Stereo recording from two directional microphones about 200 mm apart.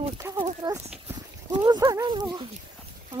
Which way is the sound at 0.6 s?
20° right (ahead or behind).